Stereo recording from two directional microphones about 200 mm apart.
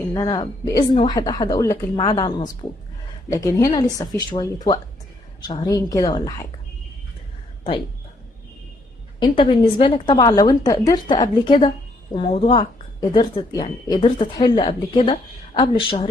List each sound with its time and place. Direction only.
0.1 s a woman's voice: 20° left (ahead or behind)
9.2 s a woman's voice: 25° left (ahead or behind)